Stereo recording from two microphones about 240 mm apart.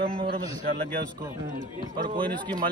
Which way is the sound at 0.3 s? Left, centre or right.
Right.